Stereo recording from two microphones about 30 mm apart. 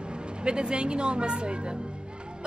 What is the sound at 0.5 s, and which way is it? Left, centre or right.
Speech, right.